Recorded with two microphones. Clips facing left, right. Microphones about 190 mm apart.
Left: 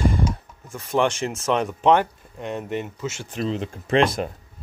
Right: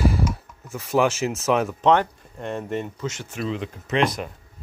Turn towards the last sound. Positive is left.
turn(degrees=30)  # may be behind; listen again after turning